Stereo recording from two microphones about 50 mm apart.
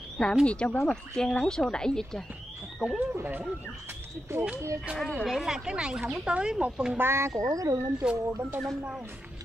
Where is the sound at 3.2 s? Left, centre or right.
Right.